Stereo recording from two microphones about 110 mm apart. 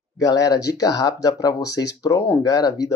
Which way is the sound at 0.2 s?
35° left (ahead or behind).